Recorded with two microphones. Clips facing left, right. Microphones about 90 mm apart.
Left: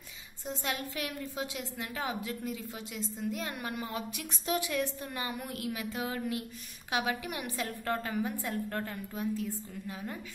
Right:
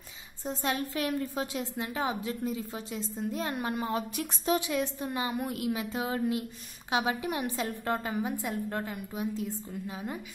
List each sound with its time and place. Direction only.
0.5 s a woman's voice: 35° right (ahead or behind)